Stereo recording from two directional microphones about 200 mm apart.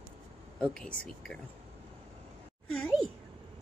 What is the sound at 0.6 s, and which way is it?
Speech, 5° left (ahead or behind).